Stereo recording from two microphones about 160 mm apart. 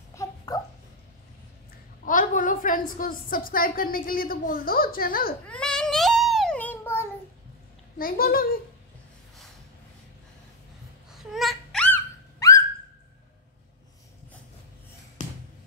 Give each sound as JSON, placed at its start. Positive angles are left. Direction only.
{"t": 0.1, "sound": "a sound", "side_deg": 20}
{"t": 2.0, "sound": "a woman's voice", "side_deg": 55}
{"t": 5.5, "sound": "child singing", "side_deg": 5}
{"t": 8.0, "sound": "a woman's voice", "side_deg": 65}
{"t": 11.1, "sound": "babbling", "side_deg": 0}
{"t": 12.4, "sound": "bird", "side_deg": 20}